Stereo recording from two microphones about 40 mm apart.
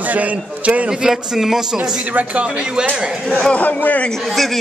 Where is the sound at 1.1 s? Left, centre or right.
Centre.